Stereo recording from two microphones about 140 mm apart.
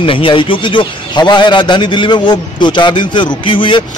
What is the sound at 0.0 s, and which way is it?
A man's voice, 40° left (ahead or behind).